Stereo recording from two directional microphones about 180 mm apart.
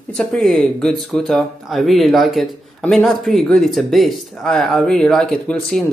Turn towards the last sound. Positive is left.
turn(degrees=5)  # may be behind; listen again after turning